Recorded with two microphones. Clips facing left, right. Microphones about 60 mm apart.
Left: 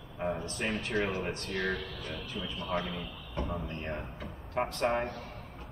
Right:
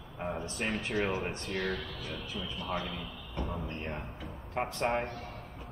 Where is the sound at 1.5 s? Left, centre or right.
Centre.